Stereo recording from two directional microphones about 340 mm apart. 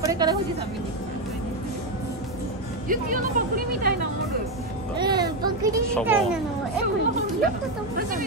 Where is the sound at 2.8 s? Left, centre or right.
Right.